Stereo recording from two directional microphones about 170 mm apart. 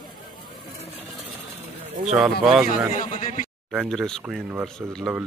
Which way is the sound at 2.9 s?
50° left (ahead or behind).